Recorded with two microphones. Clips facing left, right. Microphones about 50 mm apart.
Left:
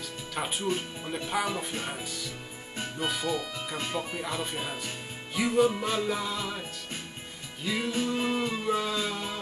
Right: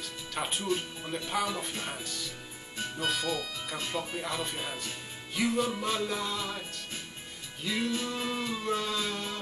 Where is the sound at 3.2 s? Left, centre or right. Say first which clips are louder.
Left 2 dB; left.